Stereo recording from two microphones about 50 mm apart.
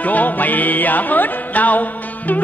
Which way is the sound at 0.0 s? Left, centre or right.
Left.